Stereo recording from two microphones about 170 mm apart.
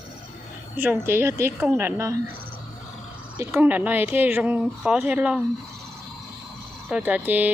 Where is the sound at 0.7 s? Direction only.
10° right (ahead or behind).